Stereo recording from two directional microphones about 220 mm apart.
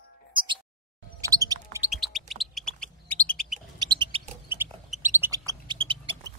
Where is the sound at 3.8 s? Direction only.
20° right (ahead or behind).